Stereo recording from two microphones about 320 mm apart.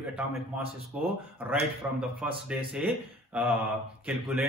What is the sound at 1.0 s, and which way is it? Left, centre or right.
Speech, centre.